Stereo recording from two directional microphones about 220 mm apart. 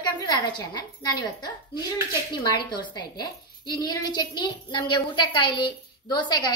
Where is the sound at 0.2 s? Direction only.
20° left (ahead or behind).